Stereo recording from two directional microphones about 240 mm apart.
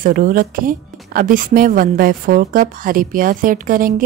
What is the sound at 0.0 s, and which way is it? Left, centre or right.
Speech, right.